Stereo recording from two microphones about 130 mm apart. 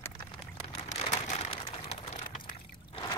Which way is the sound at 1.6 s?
45° left (ahead or behind).